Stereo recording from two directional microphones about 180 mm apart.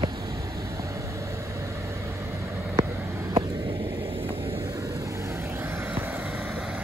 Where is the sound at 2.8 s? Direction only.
20° right (ahead or behind).